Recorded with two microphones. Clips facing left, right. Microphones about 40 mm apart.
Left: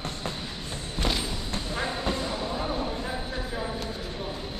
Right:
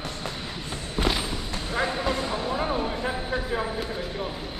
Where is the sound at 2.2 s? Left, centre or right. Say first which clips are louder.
Right 3 dB; right.